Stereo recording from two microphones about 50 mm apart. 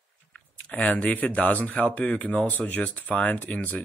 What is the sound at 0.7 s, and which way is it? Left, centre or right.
Speech, left.